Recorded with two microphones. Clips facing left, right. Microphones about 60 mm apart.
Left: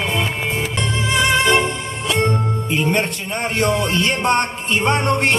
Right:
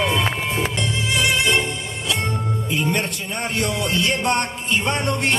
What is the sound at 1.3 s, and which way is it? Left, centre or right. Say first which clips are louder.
Music: left 4 dB; left.